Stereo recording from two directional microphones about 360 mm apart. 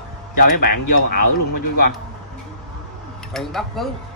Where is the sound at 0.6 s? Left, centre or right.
Left.